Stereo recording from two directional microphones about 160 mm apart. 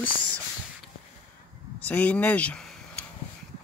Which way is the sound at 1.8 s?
10° left (ahead or behind).